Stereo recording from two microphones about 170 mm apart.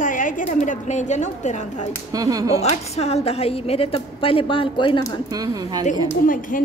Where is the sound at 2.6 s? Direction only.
40° left (ahead or behind).